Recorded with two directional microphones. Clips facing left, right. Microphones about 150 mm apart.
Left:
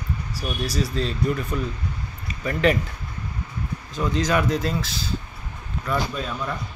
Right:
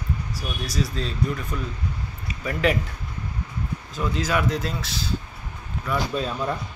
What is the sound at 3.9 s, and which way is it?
A man's voice, 5° right (ahead or behind).